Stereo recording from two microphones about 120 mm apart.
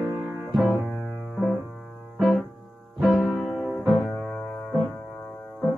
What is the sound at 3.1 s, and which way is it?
Music, 15° left (ahead or behind).